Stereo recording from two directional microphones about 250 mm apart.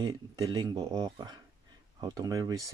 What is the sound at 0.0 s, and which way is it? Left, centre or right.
Speech, centre.